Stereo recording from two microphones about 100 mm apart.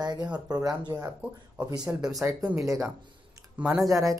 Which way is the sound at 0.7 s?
40° right (ahead or behind).